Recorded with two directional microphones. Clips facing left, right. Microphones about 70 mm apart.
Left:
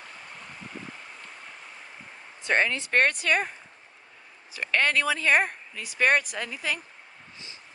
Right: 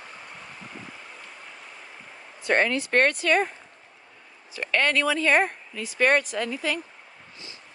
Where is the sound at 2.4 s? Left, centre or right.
Left.